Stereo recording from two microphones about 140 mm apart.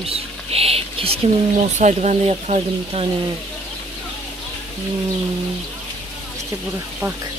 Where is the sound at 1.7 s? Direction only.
60° right (ahead or behind).